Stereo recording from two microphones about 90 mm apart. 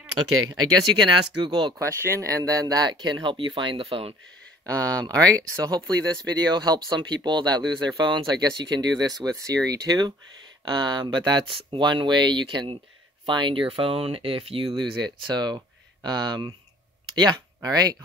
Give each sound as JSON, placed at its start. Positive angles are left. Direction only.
{"t": 0.5, "sound": "speech", "side_deg": -55}
{"t": 1.8, "sound": "speech", "side_deg": -30}
{"t": 4.6, "sound": "speech", "side_deg": -40}